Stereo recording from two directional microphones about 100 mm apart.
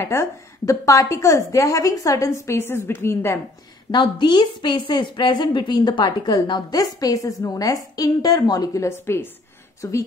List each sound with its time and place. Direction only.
0.0 s a woman's voice: 30° left (ahead or behind)
3.9 s a woman's voice: 50° left (ahead or behind); by 10.0 s 30° left (ahead or behind)